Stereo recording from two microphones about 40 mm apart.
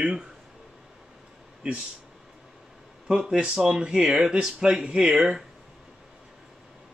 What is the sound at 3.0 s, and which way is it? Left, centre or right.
A man's voice, centre.